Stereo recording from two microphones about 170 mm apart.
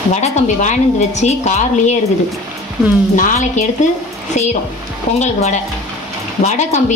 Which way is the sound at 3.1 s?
45° left (ahead or behind).